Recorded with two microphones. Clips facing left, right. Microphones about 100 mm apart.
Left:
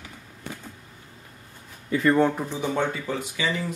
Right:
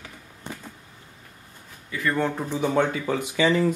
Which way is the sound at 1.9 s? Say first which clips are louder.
Left 6 dB; 25° left (ahead or behind).